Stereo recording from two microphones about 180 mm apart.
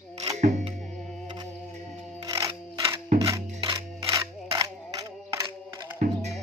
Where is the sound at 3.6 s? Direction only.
25° right (ahead or behind).